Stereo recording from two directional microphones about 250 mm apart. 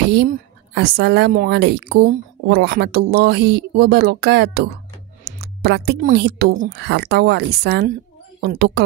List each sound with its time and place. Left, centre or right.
0.0 s a woman's voice: right